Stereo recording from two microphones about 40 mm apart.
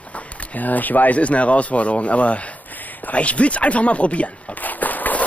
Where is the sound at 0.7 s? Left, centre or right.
Left.